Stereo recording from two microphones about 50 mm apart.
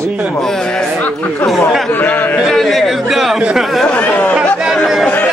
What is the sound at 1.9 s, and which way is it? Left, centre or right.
Speech, left.